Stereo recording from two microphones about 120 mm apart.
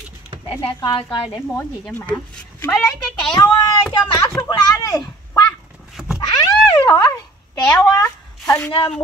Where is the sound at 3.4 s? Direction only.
20° left (ahead or behind).